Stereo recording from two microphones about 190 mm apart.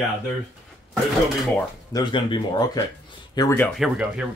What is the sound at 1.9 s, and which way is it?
Speech, 20° left (ahead or behind).